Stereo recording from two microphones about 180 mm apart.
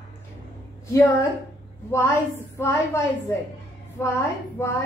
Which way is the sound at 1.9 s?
15° left (ahead or behind).